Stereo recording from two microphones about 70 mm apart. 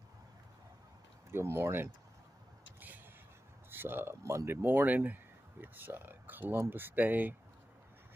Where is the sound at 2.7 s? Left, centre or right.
Right.